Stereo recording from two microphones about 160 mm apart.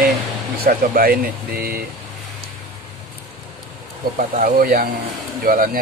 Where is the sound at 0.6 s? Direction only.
65° right (ahead or behind).